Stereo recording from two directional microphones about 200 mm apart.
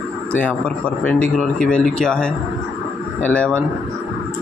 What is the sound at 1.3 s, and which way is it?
Speech, centre (ahead or behind).